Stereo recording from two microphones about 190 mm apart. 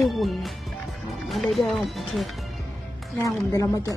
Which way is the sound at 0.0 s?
Centre (ahead or behind).